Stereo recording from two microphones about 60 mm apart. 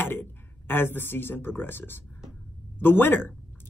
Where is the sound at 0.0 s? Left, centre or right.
Left.